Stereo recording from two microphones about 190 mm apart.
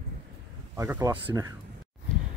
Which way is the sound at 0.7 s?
15° right (ahead or behind).